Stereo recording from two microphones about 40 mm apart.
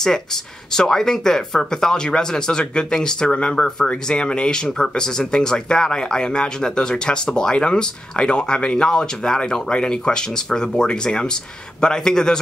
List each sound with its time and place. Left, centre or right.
0.7 s speech: centre